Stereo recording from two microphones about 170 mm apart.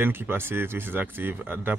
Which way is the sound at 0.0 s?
15° right (ahead or behind).